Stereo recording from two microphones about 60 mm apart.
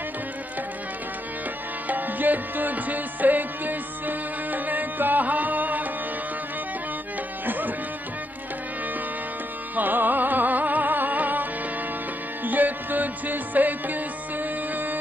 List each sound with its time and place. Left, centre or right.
1.9 s music: right
7.4 s music: right
9.8 s music: right
12.4 s music: right